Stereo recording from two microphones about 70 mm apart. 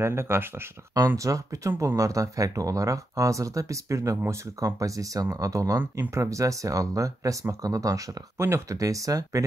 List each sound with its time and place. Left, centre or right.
0.0 s speech: right
1.0 s speech: right
5.8 s speech: right